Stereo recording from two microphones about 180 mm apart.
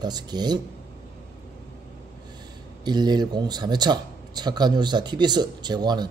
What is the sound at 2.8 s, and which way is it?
Speech, 25° right (ahead or behind).